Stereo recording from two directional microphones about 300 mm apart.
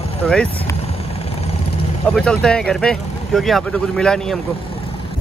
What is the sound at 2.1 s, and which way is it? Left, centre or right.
Speech, centre.